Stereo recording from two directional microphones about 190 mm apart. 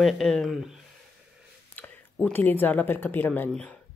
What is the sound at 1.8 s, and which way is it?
Speech, 10° left (ahead or behind).